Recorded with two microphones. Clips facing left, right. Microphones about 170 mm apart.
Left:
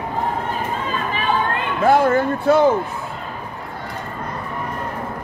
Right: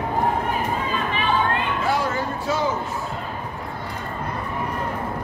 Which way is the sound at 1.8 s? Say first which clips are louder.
Left 12 dB; 55° left (ahead or behind).